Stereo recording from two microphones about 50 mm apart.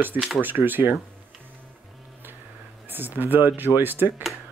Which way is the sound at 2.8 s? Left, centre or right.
Right.